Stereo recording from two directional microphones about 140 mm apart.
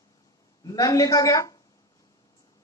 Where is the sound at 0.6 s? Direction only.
25° left (ahead or behind).